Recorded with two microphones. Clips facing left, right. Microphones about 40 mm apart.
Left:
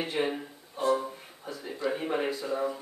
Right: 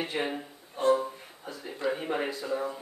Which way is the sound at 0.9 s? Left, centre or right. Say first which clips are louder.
Right 1 dB; centre.